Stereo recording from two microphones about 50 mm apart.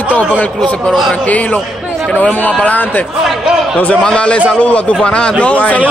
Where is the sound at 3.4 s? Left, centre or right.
Centre.